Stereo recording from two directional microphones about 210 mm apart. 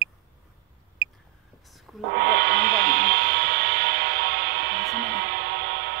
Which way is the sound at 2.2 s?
55° right (ahead or behind).